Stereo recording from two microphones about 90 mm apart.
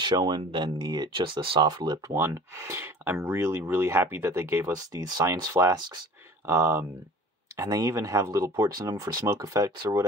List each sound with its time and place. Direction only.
0.0 s speech: 55° right (ahead or behind)
0.5 s speech: 65° right (ahead or behind); by 2.1 s 45° right (ahead or behind)
2.1 s speech: 30° right (ahead or behind)
5.2 s speech: 40° right (ahead or behind)